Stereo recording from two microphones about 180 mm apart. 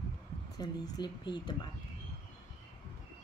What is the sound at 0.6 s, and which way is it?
Speech, 25° left (ahead or behind).